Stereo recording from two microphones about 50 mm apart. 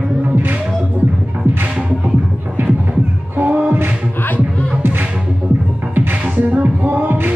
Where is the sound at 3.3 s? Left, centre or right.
Right.